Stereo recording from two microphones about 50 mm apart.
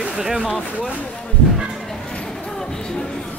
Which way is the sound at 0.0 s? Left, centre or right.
Centre.